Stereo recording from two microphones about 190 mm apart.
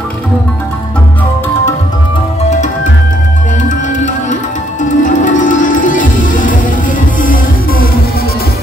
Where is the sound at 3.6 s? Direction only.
40° left (ahead or behind).